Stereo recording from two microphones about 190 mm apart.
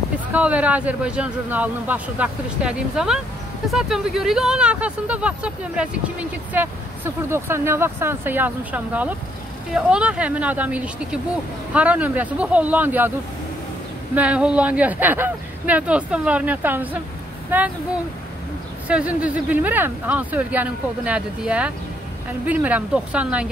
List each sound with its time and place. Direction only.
0.3 s speech: 5° right (ahead or behind)
14.1 s speech: 5° right (ahead or behind)
18.9 s speech: 5° right (ahead or behind)